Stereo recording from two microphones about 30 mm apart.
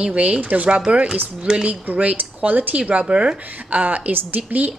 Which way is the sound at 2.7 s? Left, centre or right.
Right.